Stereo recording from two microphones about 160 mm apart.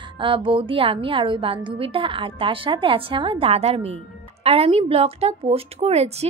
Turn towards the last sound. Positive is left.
turn(degrees=-40)  # may be behind; listen again after turning